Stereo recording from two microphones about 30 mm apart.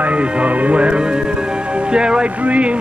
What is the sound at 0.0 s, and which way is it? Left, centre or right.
Music, right.